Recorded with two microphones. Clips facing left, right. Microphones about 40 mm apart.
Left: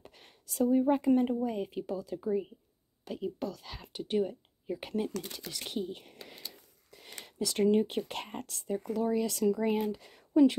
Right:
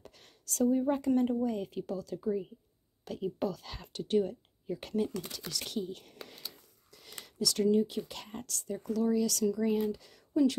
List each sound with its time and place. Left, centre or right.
0.0 s speech: centre
3.1 s speech: centre
6.2 s whispering: centre
6.9 s a sound: left
7.2 s speech: left
8.4 s speech: left